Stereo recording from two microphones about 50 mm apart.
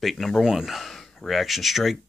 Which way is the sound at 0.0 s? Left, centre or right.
Centre.